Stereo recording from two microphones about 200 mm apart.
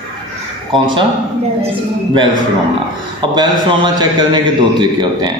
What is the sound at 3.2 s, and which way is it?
A man's voice, 20° right (ahead or behind).